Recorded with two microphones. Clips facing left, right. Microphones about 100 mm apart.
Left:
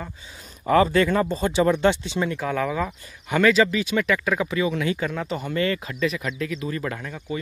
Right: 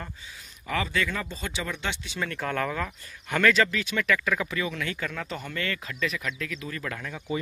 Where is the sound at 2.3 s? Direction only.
5° left (ahead or behind); by 5.9 s 20° left (ahead or behind).